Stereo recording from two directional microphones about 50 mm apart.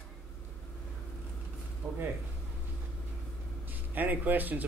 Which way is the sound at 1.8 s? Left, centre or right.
Right.